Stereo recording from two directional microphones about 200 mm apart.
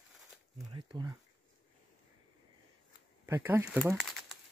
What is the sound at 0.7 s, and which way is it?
Speech, 25° right (ahead or behind).